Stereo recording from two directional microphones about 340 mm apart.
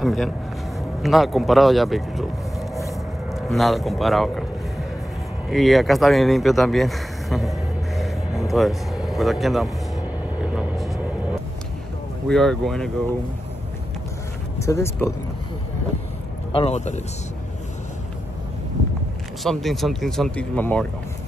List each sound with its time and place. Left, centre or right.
0.0 s speech: centre
3.3 s speech: centre
5.5 s speech: centre
8.0 s vehicle: centre
12.3 s speech: centre
14.6 s speech: centre
16.5 s speech: centre
19.4 s speech: centre